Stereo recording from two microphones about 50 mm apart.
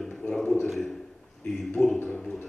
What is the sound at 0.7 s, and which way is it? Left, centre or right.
A man's voice, centre.